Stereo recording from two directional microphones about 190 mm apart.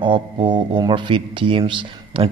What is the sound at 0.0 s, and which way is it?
A man's voice, 25° right (ahead or behind).